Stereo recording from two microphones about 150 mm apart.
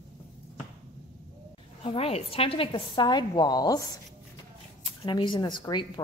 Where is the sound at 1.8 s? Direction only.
40° left (ahead or behind).